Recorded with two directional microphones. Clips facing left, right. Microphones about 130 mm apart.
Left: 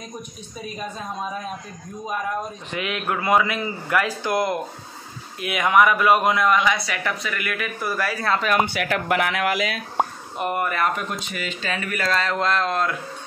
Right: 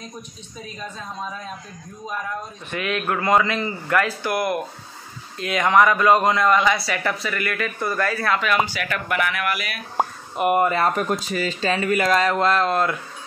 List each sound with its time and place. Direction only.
2.7 s a man's voice: 15° left (ahead or behind)
5.4 s a man's voice: 10° left (ahead or behind)
8.3 s speech: 35° left (ahead or behind)
8.6 s speech: 70° left (ahead or behind); by 9.7 s 90° left
9.9 s a sound: 5° right (ahead or behind)
10.5 s speech: 25° right (ahead or behind)
11.0 s speech: 40° right (ahead or behind)
12.1 s a man's voice: 10° right (ahead or behind)